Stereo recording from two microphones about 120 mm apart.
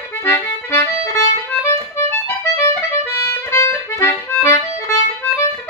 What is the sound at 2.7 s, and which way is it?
Music, 20° left (ahead or behind).